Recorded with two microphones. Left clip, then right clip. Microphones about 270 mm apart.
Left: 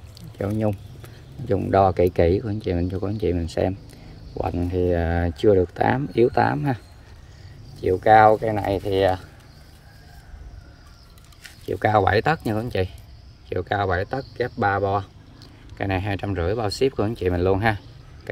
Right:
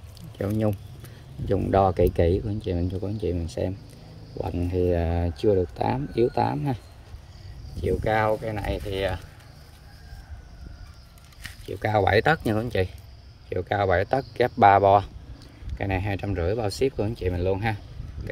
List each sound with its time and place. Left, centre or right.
0.4 s speech: centre
7.8 s speech: centre
11.6 s speech: centre
15.8 s speech: centre